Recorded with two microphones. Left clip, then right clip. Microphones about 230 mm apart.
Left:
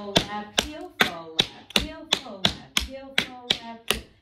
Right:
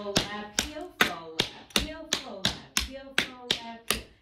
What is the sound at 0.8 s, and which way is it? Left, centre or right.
Tap, centre.